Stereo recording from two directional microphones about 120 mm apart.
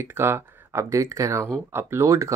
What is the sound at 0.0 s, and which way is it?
Speech, 20° right (ahead or behind).